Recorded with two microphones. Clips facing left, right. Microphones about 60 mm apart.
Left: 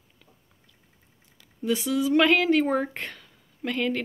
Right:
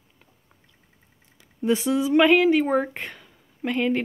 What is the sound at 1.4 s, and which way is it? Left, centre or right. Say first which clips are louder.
Speech: right 4 dB; right.